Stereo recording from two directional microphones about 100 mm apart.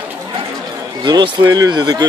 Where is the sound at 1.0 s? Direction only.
45° right (ahead or behind).